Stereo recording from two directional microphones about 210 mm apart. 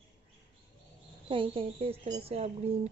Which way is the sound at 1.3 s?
25° right (ahead or behind).